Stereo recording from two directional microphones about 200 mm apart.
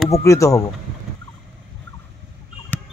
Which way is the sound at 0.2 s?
15° left (ahead or behind).